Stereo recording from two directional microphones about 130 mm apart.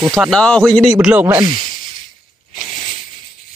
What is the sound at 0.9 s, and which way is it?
Speech, 10° right (ahead or behind).